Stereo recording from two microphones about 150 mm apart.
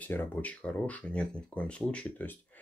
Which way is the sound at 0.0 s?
10° left (ahead or behind).